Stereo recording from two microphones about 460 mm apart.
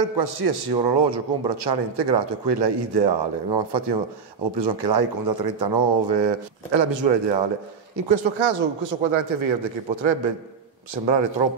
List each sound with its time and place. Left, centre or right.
0.0 s a man's voice: right
8.1 s a man's voice: right